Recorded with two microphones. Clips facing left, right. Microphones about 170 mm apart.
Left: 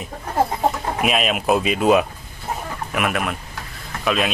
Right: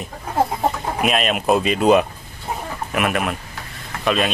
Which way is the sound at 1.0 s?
Centre (ahead or behind).